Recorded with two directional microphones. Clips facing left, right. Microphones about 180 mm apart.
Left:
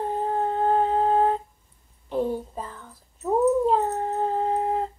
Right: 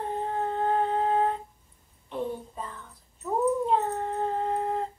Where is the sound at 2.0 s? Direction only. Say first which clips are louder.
Left 6 dB; 35° left (ahead or behind).